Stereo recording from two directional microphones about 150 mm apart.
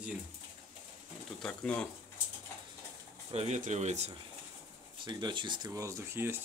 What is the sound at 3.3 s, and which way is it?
Speech, 45° right (ahead or behind).